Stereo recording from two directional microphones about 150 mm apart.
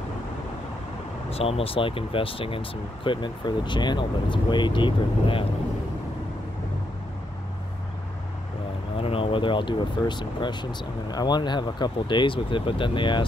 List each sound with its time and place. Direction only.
1.3 s speech: 40° left (ahead or behind)
8.9 s speech: 40° left (ahead or behind)